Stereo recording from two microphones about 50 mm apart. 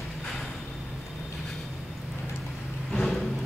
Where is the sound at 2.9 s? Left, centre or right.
Centre.